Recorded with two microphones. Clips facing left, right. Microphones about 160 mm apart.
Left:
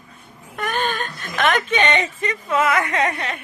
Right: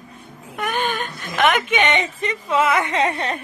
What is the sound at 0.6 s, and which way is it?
Speech, 15° right (ahead or behind).